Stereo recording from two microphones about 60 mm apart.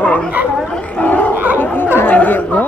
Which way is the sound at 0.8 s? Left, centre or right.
Left.